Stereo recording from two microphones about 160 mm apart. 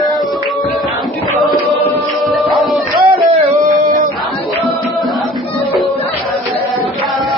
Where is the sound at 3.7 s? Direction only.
55° right (ahead or behind).